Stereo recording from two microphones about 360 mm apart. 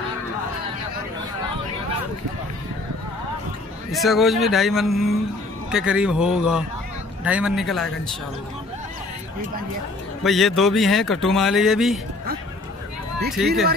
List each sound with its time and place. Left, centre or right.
3.9 s speech: centre
10.2 s speech: centre
13.4 s speech: centre